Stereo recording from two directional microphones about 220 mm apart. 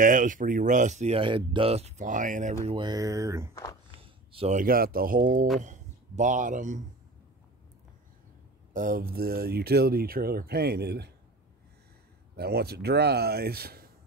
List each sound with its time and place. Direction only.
0.0 s speech: 35° right (ahead or behind)
2.6 s speech: 20° right (ahead or behind)
4.0 s a sound: 25° right (ahead or behind)
4.6 s speech: 40° right (ahead or behind)
8.7 s speech: 40° right (ahead or behind)
12.4 s speech: 45° right (ahead or behind)